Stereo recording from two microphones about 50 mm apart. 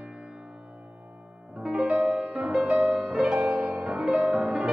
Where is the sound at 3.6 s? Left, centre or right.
Right.